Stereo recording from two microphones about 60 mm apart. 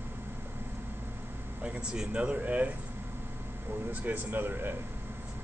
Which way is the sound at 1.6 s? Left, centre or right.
Centre.